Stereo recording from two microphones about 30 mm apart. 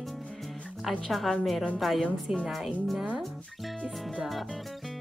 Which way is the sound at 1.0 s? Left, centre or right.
Centre.